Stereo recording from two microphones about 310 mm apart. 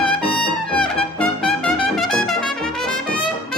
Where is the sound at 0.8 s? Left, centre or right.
Centre.